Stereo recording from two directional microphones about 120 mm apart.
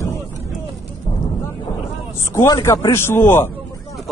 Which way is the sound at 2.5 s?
30° left (ahead or behind).